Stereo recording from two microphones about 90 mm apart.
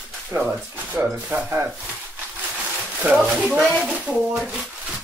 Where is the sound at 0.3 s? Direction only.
20° right (ahead or behind).